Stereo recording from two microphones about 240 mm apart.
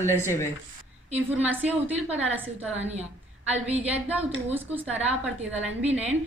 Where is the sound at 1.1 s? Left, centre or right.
Centre.